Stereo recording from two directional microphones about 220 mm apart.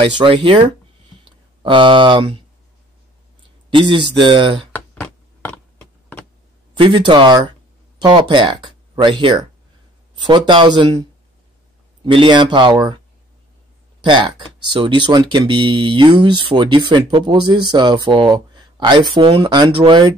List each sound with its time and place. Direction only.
0.2 s speech: 25° right (ahead or behind)
3.7 s speech: 20° right (ahead or behind)
4.7 s a sound: 10° left (ahead or behind)
6.8 s speech: 20° right (ahead or behind)
14.0 s speech: 20° right (ahead or behind)